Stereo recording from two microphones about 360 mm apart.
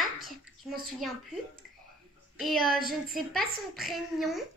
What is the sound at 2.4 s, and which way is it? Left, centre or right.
A woman's voice, centre.